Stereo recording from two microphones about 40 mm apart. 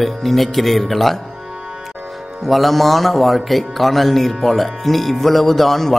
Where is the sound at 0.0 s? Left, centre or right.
Centre.